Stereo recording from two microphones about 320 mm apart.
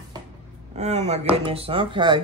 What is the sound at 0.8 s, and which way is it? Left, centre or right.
Speech, right.